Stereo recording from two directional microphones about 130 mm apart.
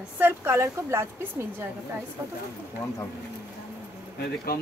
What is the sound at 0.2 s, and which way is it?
Speech, 15° right (ahead or behind).